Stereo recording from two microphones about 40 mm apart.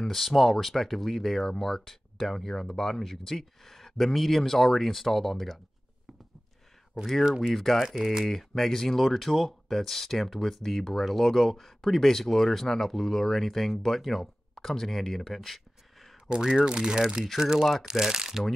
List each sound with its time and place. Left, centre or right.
0.1 s speech: centre
7.2 s speech: centre
7.5 s speech: centre
7.9 s speech: centre
8.3 s speech: centre
16.3 s speech: centre